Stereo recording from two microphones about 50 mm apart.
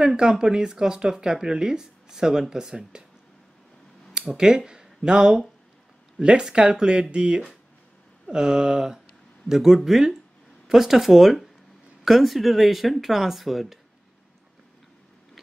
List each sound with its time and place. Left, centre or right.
0.0 s speech: centre
4.3 s speech: centre